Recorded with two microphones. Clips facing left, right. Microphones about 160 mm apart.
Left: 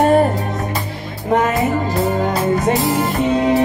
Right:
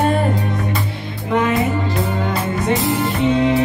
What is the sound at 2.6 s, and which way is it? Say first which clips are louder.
Music: left 2 dB; 40° left (ahead or behind).